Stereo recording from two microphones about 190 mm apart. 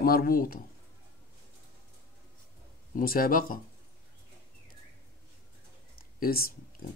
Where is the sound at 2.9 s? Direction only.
50° left (ahead or behind).